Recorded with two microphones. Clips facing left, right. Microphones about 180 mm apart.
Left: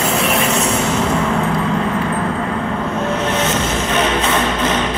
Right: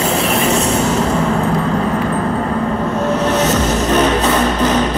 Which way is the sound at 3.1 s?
40° right (ahead or behind).